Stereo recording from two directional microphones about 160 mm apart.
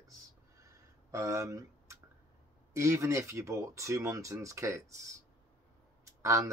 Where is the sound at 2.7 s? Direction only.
20° right (ahead or behind).